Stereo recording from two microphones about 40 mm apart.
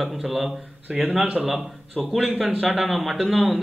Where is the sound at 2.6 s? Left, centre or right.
Centre.